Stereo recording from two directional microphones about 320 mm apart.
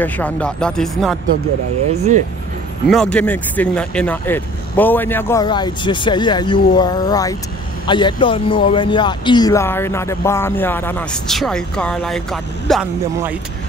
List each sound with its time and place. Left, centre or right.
0.0 s speech: centre
2.0 s speech: right
2.9 s a man's voice: centre